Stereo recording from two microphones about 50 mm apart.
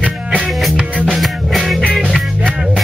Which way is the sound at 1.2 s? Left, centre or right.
Centre.